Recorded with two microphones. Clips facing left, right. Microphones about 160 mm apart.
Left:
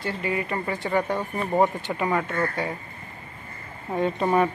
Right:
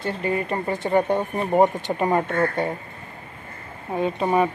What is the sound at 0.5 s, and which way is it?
Speech, 25° right (ahead or behind).